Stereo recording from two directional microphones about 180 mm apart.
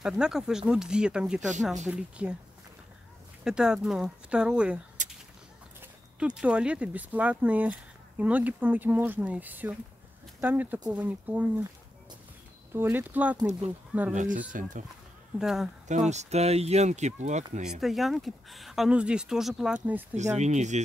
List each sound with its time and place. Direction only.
0.0 s speech: 5° right (ahead or behind)
3.4 s speech: 5° right (ahead or behind)
5.0 s a sound: 45° right (ahead or behind)
5.8 s speech: 5° right (ahead or behind)
12.7 s speech: 10° right (ahead or behind)
14.1 s speech: 45° right (ahead or behind)
15.3 s speech: centre (ahead or behind)
15.9 s speech: 40° right (ahead or behind)
17.6 s speech: centre (ahead or behind)
20.2 s speech: 40° right (ahead or behind)